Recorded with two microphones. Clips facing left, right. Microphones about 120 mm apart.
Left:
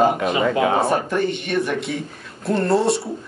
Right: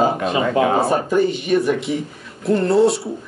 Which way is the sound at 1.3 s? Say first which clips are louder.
Right 4 dB; 5° right (ahead or behind).